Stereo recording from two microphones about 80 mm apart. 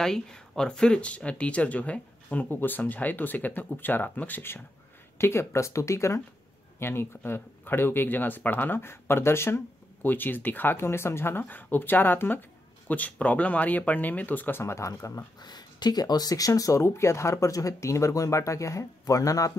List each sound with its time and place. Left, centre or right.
0.0 s speech: centre; by 14.6 s left
14.6 s speech: left
15.4 s speech: left